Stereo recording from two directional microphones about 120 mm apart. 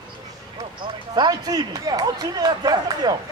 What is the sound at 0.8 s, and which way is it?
Speech, 35° right (ahead or behind).